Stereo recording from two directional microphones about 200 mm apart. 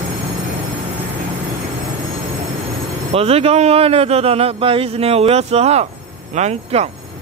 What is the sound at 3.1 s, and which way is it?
A man's voice, 30° right (ahead or behind).